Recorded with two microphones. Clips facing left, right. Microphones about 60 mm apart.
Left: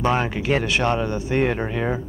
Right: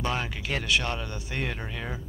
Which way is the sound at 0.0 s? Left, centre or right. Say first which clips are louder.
Left 9 dB; left.